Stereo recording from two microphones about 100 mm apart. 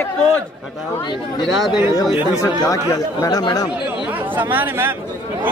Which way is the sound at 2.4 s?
35° left (ahead or behind).